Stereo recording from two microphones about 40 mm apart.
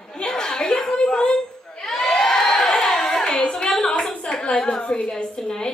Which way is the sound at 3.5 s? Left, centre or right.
Left.